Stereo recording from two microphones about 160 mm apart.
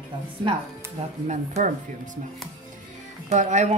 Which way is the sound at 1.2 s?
45° right (ahead or behind).